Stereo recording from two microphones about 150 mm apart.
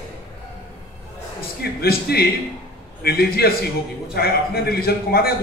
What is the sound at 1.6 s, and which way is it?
A man's voice, 90° left.